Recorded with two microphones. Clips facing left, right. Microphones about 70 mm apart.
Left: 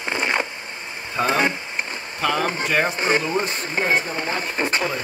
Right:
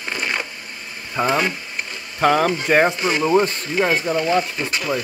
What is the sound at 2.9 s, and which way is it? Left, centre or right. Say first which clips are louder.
Speech: left 1 dB; left.